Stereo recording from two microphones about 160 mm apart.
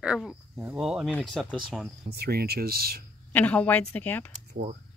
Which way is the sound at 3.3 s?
10° left (ahead or behind).